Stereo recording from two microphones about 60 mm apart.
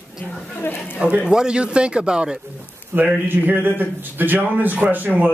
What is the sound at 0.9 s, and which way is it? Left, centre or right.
Speech, right.